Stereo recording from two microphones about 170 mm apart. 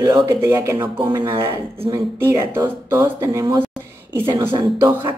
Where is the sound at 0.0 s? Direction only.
20° right (ahead or behind).